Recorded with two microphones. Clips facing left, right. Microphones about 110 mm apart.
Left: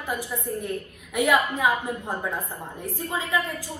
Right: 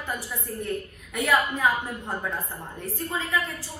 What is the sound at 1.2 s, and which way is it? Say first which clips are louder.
Speech: left 2 dB; 15° left (ahead or behind).